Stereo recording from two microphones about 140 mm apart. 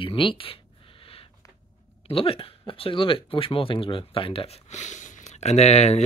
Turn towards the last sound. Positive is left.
turn(degrees=50)  # may be behind; listen again after turning